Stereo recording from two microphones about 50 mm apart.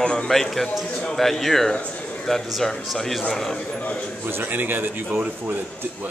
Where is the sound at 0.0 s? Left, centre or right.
Centre.